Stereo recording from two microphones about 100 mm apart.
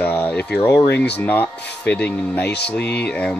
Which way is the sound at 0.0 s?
20° left (ahead or behind).